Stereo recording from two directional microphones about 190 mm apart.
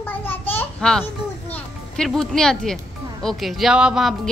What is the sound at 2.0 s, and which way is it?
A woman's voice, centre (ahead or behind).